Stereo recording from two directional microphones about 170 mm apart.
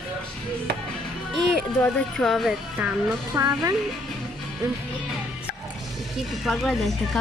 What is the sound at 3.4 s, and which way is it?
Speech, 20° right (ahead or behind).